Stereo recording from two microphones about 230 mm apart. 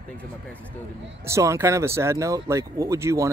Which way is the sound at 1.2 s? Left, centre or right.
Centre.